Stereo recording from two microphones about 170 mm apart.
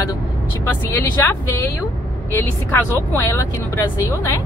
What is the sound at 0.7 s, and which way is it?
Speech, 10° left (ahead or behind).